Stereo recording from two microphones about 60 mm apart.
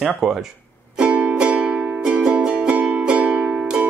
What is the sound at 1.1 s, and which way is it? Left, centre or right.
Music, centre.